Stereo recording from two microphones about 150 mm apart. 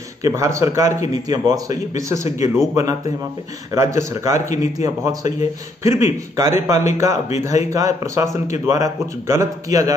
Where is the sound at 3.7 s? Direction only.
20° right (ahead or behind).